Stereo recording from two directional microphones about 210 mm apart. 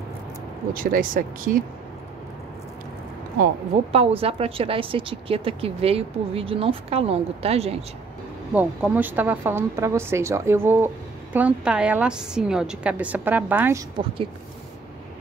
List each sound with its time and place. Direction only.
0.7 s speech: 40° right (ahead or behind)
3.9 s a woman's voice: 30° right (ahead or behind)
8.5 s a woman's voice: 10° right (ahead or behind)